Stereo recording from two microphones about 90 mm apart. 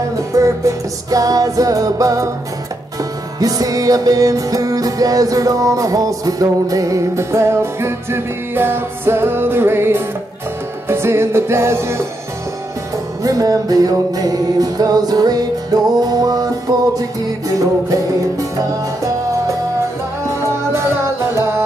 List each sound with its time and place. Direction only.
0.3 s music: 35° right (ahead or behind)
3.3 s music: 45° right (ahead or behind)
13.2 s music: 40° right (ahead or behind)
20.2 s music: 30° right (ahead or behind)